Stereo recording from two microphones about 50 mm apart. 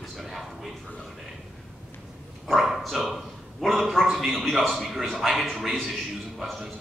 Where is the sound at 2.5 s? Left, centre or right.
Centre.